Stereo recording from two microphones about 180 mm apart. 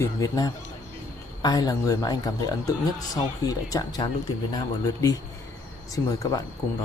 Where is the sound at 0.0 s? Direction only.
20° left (ahead or behind).